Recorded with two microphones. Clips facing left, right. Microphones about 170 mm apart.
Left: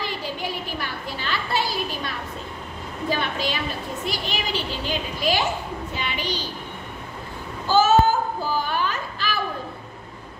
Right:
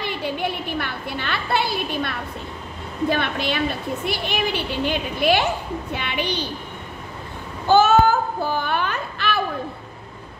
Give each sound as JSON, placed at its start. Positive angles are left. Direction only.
{"t": 0.0, "sound": "music", "side_deg": -60}
{"t": 3.1, "sound": "a woman's voice", "side_deg": -60}
{"t": 7.6, "sound": "a sound", "side_deg": -60}